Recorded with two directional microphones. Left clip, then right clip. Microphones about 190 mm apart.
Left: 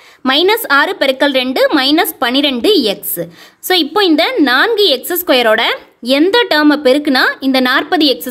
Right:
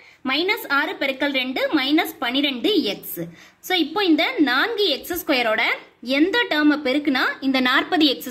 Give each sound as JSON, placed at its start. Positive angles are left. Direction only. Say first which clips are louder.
{"t": 0.2, "sound": "a woman's voice", "louder": "left 11 dB", "side_deg": 60}